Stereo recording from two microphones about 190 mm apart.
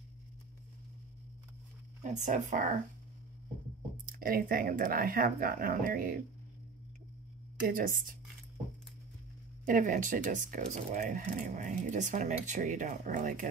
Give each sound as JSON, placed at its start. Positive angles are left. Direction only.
{"t": 2.0, "sound": "speech", "side_deg": -40}
{"t": 4.0, "sound": "speech", "side_deg": -50}
{"t": 7.6, "sound": "speech", "side_deg": -45}
{"t": 9.7, "sound": "speech", "side_deg": -45}